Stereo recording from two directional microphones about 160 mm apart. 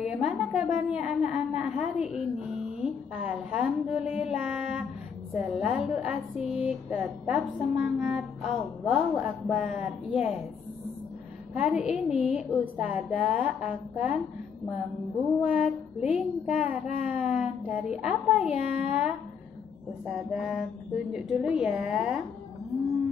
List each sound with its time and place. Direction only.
0.0 s a woman's voice: 5° right (ahead or behind)
11.5 s a woman's voice: 5° right (ahead or behind)
15.4 s a child's voice: 10° right (ahead or behind)